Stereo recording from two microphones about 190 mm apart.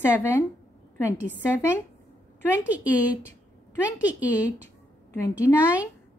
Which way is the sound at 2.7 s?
10° right (ahead or behind).